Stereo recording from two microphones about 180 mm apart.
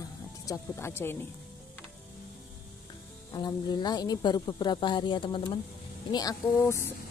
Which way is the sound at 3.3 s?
20° left (ahead or behind).